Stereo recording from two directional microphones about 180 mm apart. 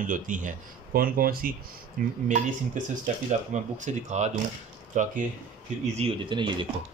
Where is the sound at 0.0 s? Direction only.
45° right (ahead or behind).